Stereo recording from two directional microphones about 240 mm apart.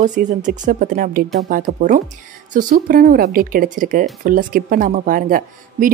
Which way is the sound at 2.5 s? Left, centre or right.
Right.